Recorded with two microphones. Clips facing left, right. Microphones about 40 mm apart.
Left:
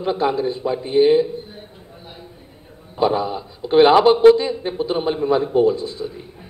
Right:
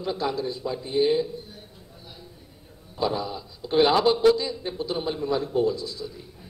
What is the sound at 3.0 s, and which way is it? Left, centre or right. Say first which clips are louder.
A man's voice: left 8 dB; left.